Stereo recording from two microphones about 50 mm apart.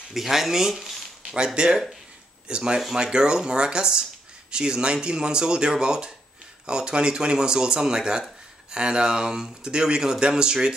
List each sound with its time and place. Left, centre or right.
0.1 s speech: centre